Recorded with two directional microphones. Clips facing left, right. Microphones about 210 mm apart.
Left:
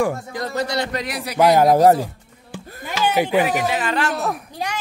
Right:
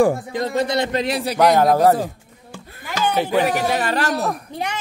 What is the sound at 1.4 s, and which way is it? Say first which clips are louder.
Speech: left 1 dB; 10° left (ahead or behind).